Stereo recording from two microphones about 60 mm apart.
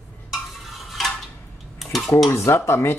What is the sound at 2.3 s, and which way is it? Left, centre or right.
Speech, left.